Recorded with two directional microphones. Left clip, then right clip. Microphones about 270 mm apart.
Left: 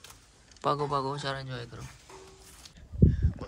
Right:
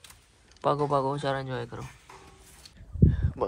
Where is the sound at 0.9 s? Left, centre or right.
Centre.